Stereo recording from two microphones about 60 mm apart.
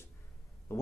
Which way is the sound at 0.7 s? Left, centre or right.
Left.